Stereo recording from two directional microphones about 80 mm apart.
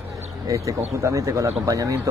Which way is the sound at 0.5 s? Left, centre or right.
Right.